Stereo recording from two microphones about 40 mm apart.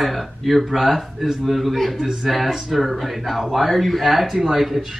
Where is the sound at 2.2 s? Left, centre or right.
Centre.